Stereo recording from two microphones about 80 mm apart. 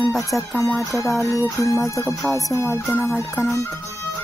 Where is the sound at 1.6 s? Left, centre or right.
Left.